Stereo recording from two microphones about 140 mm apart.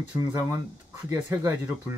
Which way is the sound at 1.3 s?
15° right (ahead or behind).